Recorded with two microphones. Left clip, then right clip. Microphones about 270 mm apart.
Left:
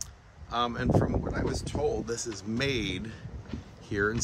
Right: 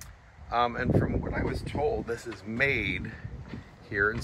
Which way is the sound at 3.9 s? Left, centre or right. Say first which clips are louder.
Right 2 dB; centre.